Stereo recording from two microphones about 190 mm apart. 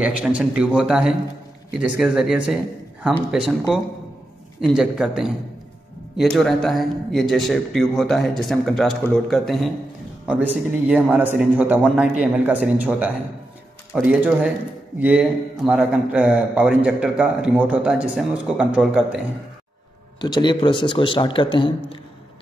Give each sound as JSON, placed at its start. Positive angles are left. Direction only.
{"t": 0.0, "sound": "a man's voice", "side_deg": -5}
{"t": 20.2, "sound": "a man's voice", "side_deg": 20}